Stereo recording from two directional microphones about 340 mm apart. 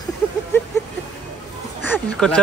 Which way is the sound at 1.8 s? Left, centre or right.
Centre.